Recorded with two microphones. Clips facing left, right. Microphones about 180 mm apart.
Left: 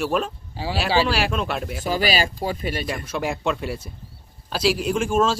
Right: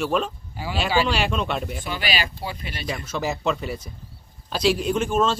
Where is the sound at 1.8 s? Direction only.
40° left (ahead or behind).